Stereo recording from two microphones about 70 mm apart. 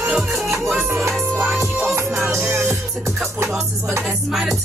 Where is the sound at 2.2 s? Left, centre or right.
Right.